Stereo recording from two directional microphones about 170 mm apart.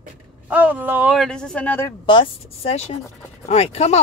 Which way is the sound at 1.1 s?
Centre (ahead or behind).